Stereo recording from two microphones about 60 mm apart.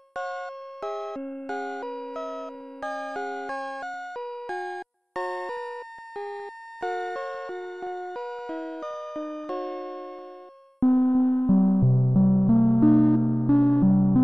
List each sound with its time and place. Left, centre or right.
0.1 s doorbell: centre
1.2 s music: centre
10.8 s music: left
11.8 s music: left
12.2 s music: left
13.8 s music: left